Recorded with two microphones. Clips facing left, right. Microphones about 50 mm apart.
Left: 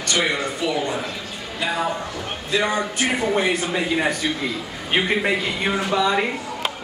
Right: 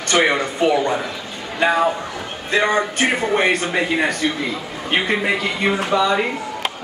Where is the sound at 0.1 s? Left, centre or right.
Right.